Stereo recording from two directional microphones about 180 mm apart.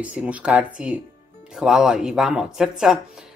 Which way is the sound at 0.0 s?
5° right (ahead or behind).